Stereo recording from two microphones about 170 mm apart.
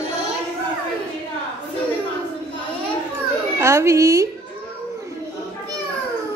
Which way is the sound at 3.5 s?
15° right (ahead or behind).